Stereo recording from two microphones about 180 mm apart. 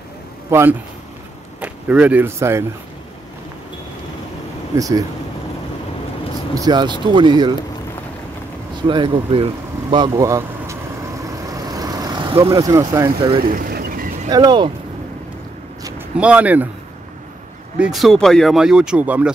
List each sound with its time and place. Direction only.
0.5 s a man's voice: 15° right (ahead or behind)
4.7 s speech: 20° right (ahead or behind)
6.5 s speech: 20° right (ahead or behind)
8.8 s vehicle: 25° right (ahead or behind)
12.4 s speech: 20° right (ahead or behind)
13.4 s vehicle: 50° right (ahead or behind)
14.3 s speech: 25° right (ahead or behind)
16.2 s speech: 5° right (ahead or behind)
17.7 s speech: 5° right (ahead or behind)